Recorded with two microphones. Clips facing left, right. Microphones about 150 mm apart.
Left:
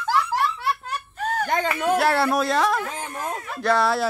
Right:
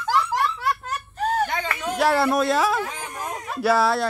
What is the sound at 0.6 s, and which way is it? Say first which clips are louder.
Baby laughter: right 1 dB; 40° right (ahead or behind).